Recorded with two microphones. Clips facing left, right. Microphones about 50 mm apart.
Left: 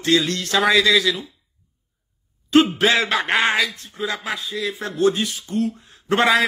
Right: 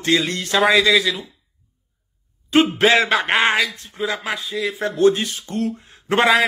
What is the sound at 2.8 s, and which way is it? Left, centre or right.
Speech, right.